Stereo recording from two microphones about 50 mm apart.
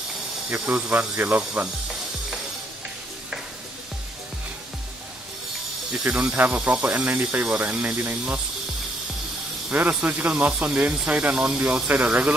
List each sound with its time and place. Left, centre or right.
0.5 s speech: right
6.1 s speech: right
7.4 s speech: right
7.8 s speech: right
9.7 s speech: right
10.3 s speech: right